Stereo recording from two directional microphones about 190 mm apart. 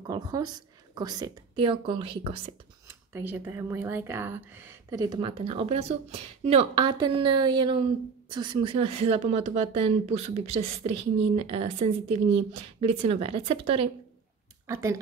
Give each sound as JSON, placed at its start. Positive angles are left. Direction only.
{"t": 0.0, "sound": "a woman's voice", "side_deg": -20}
{"t": 2.9, "sound": "speech", "side_deg": -10}
{"t": 14.7, "sound": "speech", "side_deg": -15}